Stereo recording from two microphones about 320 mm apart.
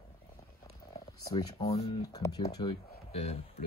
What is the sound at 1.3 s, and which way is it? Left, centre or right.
Speech, centre.